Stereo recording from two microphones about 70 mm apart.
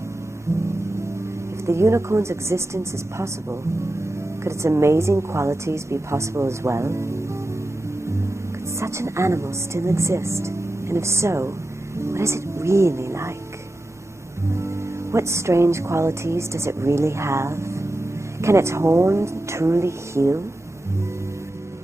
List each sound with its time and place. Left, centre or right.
0.5 s music: right
1.7 s speech: right
8.7 s speech: right
14.5 s music: right
18.4 s speech: right